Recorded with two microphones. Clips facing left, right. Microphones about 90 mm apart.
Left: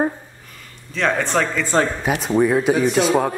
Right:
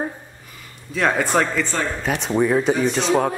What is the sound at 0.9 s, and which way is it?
Speech, 5° right (ahead or behind).